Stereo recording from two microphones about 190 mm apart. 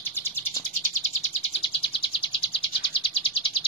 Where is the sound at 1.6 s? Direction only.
30° left (ahead or behind).